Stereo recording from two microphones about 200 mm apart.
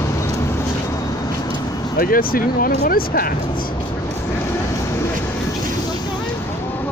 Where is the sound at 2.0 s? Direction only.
45° left (ahead or behind).